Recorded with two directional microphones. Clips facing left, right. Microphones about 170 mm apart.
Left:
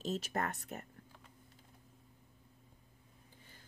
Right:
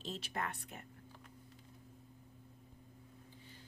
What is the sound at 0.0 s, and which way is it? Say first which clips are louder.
Speech: left 5 dB; 45° left (ahead or behind).